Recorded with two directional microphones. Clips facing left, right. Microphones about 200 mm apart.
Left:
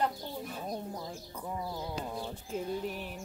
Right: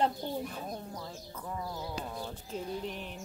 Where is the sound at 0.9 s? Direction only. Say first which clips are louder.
Left 2 dB; 15° left (ahead or behind).